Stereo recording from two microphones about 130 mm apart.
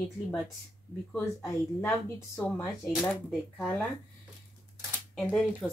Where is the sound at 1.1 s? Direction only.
15° left (ahead or behind).